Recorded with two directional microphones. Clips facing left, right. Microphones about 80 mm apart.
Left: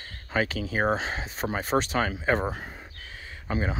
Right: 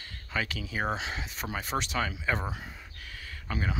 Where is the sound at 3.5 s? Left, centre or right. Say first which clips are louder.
Left 5 dB; left.